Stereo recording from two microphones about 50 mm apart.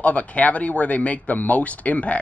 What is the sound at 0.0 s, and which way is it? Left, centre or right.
Speech, left.